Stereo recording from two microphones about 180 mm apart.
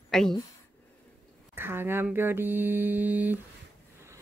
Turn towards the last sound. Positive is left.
turn(degrees=-10)  # may be behind; listen again after turning